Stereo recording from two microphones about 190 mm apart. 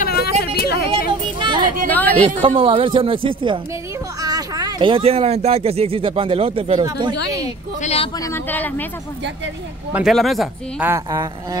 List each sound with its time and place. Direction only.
0.0 s a sound: 55° left (ahead or behind)
1.4 s a sound: 25° right (ahead or behind)
1.9 s speech: 10° left (ahead or behind)
2.4 s speech: 30° right (ahead or behind)
7.8 s speech: 35° left (ahead or behind)
8.2 s speech: 10° left (ahead or behind)
9.9 s speech: centre (ahead or behind)
10.9 s speech: 20° right (ahead or behind)